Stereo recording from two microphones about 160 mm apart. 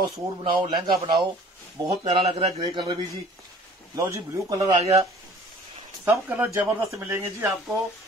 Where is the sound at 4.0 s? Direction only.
20° right (ahead or behind).